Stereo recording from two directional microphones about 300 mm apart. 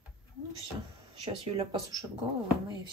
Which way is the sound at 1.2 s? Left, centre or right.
Centre.